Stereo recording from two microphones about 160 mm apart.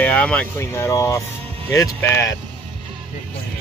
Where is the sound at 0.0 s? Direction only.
10° left (ahead or behind).